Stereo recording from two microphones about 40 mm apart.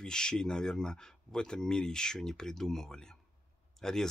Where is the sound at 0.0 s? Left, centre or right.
Centre.